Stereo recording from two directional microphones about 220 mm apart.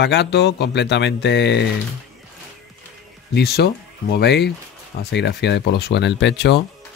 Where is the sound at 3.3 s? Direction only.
50° left (ahead or behind).